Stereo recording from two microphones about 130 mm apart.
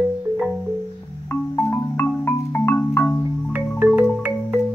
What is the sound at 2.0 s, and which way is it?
Marimba, 15° left (ahead or behind).